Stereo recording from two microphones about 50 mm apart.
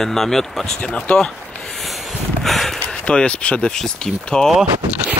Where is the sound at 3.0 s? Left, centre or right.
Left.